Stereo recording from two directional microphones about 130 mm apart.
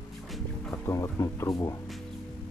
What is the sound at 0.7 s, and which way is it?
Speech, 25° left (ahead or behind).